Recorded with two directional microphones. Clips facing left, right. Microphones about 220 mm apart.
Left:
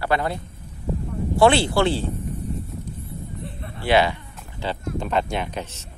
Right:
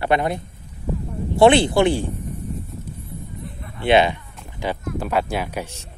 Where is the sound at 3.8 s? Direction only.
20° right (ahead or behind).